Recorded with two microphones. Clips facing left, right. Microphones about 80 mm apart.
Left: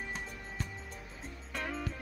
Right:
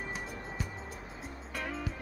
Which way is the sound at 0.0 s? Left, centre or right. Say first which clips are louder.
Right 2 dB; centre.